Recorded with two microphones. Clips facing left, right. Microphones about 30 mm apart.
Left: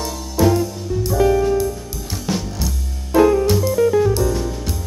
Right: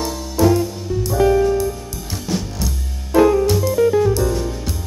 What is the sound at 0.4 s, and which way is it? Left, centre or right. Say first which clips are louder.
Music: right 1 dB; centre.